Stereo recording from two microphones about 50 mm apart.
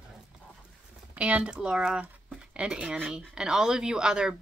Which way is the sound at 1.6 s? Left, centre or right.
Centre.